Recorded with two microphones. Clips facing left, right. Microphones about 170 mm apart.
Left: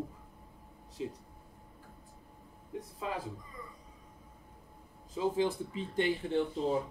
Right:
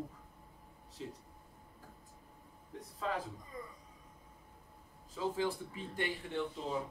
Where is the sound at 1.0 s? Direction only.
15° left (ahead or behind).